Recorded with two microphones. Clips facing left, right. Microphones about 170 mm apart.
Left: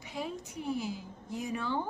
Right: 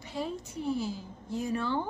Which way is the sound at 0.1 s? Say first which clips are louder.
Right 3 dB; 10° left (ahead or behind).